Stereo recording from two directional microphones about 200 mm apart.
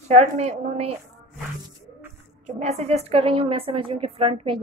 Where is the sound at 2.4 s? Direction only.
35° right (ahead or behind).